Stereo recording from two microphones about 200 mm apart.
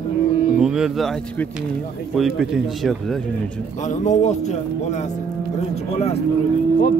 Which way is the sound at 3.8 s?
40° left (ahead or behind).